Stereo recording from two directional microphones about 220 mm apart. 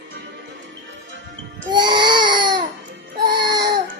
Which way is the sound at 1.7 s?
20° right (ahead or behind).